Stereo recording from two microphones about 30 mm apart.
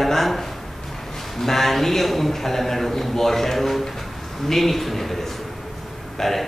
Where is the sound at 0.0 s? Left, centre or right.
Centre.